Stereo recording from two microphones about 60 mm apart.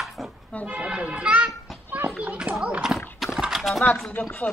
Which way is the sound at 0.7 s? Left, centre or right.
Centre.